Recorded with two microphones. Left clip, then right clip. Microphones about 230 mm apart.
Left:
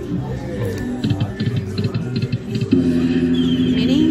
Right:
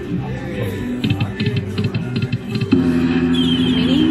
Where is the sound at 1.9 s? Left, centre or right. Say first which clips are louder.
Right 1 dB; centre.